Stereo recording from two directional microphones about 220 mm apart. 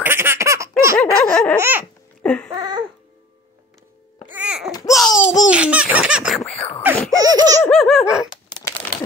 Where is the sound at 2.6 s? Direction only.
20° right (ahead or behind).